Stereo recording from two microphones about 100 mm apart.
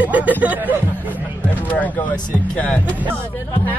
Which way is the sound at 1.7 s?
15° left (ahead or behind).